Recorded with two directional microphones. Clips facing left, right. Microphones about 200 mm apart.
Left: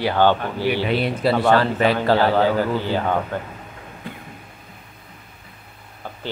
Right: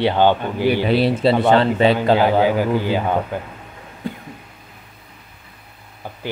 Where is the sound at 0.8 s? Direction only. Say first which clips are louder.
Right 4 dB; 35° right (ahead or behind).